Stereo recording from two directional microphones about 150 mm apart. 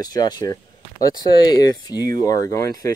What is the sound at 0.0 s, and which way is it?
Speech, 25° left (ahead or behind).